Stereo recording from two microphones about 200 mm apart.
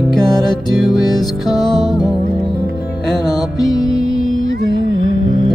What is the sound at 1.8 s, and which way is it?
Music, 20° left (ahead or behind).